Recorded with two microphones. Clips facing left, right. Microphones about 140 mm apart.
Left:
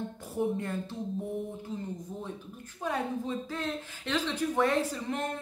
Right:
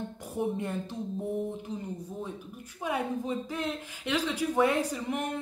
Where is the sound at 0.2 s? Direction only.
20° right (ahead or behind).